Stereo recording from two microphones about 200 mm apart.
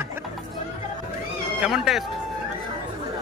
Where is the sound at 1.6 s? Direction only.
Centre (ahead or behind).